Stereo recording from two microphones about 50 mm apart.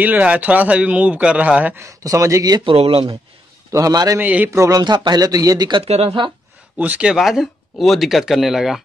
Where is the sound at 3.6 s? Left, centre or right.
Right.